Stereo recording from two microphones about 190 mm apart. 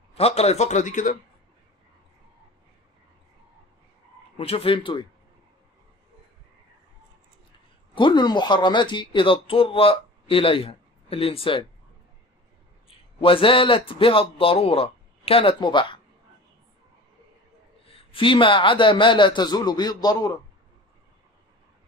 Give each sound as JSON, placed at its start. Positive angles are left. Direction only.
{"t": 0.1, "sound": "a man's voice", "side_deg": 35}
{"t": 4.4, "sound": "speech", "side_deg": 30}
{"t": 7.9, "sound": "speech", "side_deg": 25}
{"t": 12.8, "sound": "speech", "side_deg": 30}
{"t": 18.1, "sound": "speech", "side_deg": 25}